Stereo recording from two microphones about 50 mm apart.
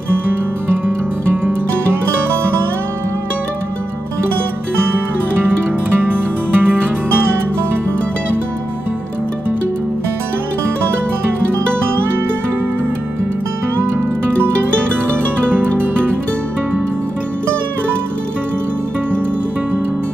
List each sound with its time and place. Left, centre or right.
0.8 s music: right
5.9 s music: right